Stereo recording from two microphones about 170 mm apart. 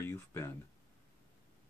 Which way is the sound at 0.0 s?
15° left (ahead or behind).